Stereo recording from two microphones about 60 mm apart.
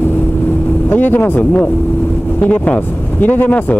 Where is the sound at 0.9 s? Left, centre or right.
Left.